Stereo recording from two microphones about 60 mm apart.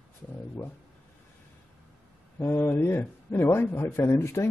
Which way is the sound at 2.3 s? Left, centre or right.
Left.